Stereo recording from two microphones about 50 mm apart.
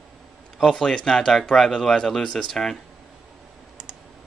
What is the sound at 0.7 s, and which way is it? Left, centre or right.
Speech, centre.